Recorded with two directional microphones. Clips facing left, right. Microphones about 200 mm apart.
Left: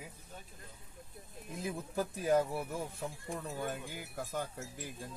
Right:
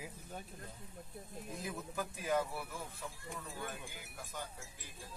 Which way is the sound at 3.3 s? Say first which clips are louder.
Left 7 dB; 55° left (ahead or behind).